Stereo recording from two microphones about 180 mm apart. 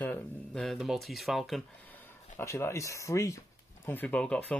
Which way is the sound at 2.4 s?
15° left (ahead or behind).